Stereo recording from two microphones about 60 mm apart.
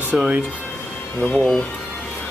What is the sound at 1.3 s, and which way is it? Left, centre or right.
Speech, centre.